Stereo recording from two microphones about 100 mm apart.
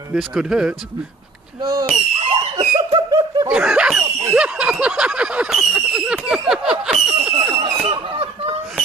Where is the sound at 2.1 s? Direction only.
80° right.